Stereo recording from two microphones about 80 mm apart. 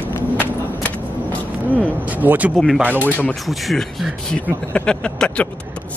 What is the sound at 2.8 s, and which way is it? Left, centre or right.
Speech, right.